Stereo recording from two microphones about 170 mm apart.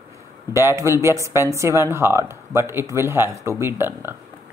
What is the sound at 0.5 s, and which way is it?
Speech, 15° right (ahead or behind).